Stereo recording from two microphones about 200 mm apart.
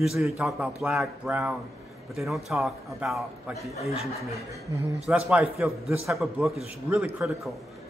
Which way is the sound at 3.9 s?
30° left (ahead or behind).